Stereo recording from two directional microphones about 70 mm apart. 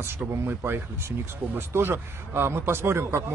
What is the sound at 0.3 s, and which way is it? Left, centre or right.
A man's voice, right.